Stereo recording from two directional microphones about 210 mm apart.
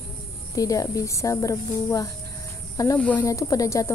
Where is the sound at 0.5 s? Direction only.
15° left (ahead or behind).